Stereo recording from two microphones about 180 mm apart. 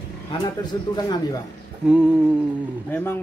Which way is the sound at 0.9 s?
25° left (ahead or behind).